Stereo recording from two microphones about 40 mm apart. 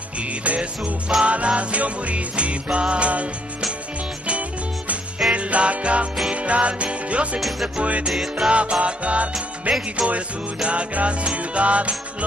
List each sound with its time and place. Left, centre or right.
0.4 s music: right
4.3 s music: right
8.1 s music: centre
8.5 s music: right
9.3 s music: centre
10.6 s music: right